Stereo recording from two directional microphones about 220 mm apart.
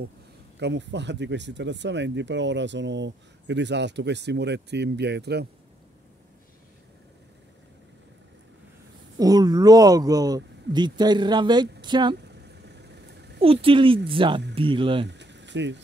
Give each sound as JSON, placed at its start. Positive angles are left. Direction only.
{"t": 0.6, "sound": "speech", "side_deg": -50}
{"t": 9.2, "sound": "speech", "side_deg": -15}
{"t": 12.3, "sound": "vehicle", "side_deg": -50}
{"t": 13.4, "sound": "speech", "side_deg": -25}
{"t": 15.0, "sound": "a sound", "side_deg": -55}